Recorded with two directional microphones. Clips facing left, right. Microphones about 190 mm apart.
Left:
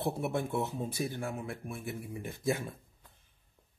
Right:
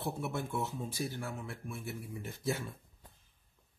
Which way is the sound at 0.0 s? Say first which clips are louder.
Left 5 dB; 60° left (ahead or behind).